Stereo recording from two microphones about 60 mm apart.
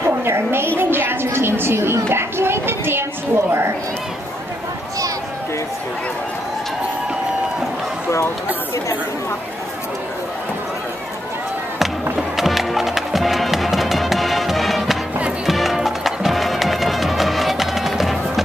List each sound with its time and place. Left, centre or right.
0.0 s a sound: right
2.0 s a woman's voice: right
11.8 s music: centre